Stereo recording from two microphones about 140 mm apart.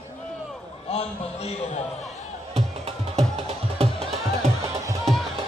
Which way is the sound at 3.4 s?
45° right (ahead or behind).